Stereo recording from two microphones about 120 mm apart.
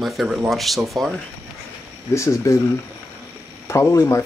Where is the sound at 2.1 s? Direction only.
25° left (ahead or behind).